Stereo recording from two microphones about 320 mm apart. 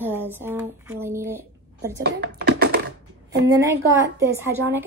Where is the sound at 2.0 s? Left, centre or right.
Right.